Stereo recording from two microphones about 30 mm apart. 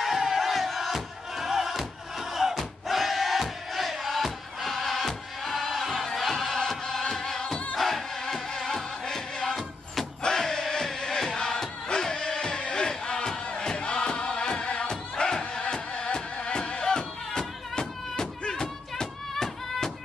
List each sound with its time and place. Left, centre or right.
0.0 s battle cry: centre
4.2 s music: centre
10.2 s crowd: centre
12.7 s music: left
18.5 s a sound: left